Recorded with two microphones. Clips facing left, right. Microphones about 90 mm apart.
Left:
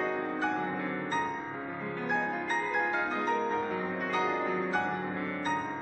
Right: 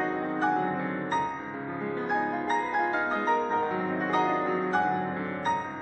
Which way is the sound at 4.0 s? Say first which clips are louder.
Right 5 dB; 35° right (ahead or behind).